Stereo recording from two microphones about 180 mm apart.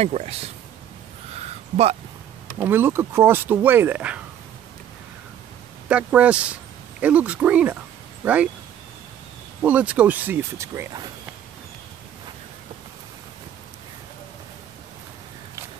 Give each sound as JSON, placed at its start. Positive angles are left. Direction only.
{"t": 0.0, "sound": "speech", "side_deg": -35}
{"t": 1.3, "sound": "a sound", "side_deg": -35}
{"t": 2.6, "sound": "speech", "side_deg": -10}
{"t": 5.9, "sound": "speech", "side_deg": -5}
{"t": 9.6, "sound": "speech", "side_deg": -10}